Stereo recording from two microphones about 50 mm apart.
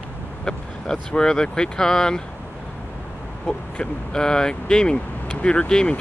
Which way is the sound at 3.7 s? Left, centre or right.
Centre.